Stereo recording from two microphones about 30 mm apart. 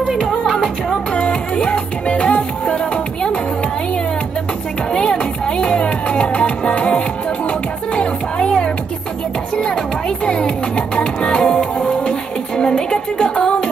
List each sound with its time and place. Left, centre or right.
0.1 s music: centre
1.1 s music: left
5.0 s music: left
9.6 s music: left